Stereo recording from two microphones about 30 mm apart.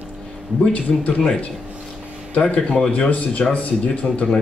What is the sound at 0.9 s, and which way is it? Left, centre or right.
Speech, left.